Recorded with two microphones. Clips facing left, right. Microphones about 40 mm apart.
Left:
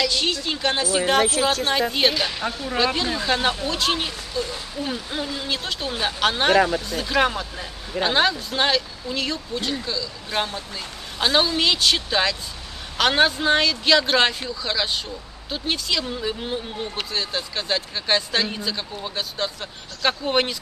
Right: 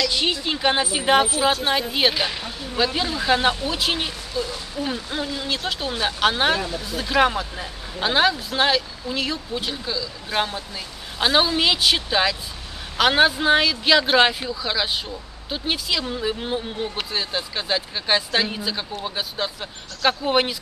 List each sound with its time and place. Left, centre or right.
0.1 s speech: centre
1.7 s speech: centre